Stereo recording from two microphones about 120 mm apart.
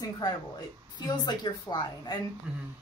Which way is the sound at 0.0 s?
35° left (ahead or behind).